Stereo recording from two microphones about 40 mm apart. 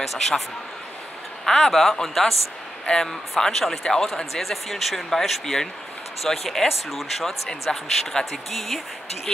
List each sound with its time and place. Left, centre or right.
0.0 s speech: centre
1.4 s speech: centre